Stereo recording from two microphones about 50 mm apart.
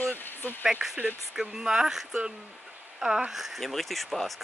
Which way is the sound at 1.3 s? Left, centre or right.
Centre.